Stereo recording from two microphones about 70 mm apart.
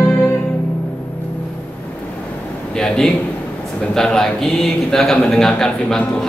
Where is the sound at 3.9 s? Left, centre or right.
Centre.